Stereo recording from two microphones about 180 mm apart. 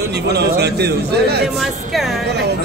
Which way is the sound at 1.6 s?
Centre (ahead or behind).